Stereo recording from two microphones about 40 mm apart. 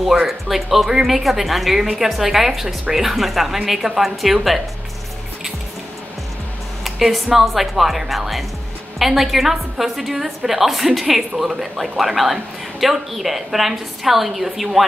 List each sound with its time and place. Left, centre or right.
0.3 s a woman's voice: centre
6.8 s a woman's voice: centre